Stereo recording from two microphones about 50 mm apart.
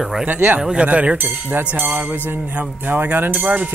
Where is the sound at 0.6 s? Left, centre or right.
Centre.